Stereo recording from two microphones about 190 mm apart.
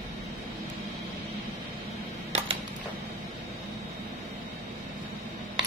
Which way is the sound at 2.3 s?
35° right (ahead or behind).